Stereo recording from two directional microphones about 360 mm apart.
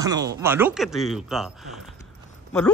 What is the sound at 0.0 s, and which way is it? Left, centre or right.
Speech, centre.